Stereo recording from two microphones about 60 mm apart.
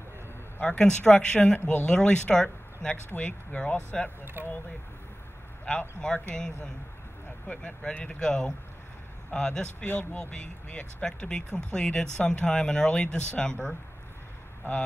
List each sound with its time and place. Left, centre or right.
0.6 s speech: centre
1.6 s speech: left
1.9 s speech: centre
4.2 s speech: right
5.7 s speech: centre
9.8 s speech: left
10.3 s speech: centre